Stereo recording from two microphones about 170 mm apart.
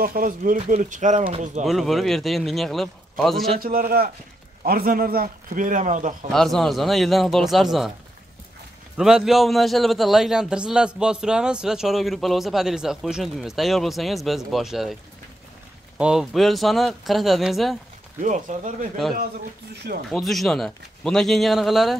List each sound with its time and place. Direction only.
0.0 s a man's voice: 55° right (ahead or behind)
1.7 s a man's voice: centre (ahead or behind)
3.5 s a man's voice: 60° right (ahead or behind)
6.3 s a man's voice: centre (ahead or behind)
8.9 s a man's voice: 5° right (ahead or behind)
16.0 s a man's voice: 5° right (ahead or behind)
18.2 s a man's voice: 50° right (ahead or behind)
20.1 s a man's voice: centre (ahead or behind)